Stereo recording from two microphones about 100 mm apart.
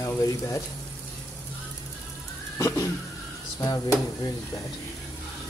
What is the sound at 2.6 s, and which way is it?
Speech, 30° left (ahead or behind).